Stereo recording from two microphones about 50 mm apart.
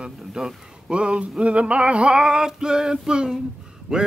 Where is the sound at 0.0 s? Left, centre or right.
Centre.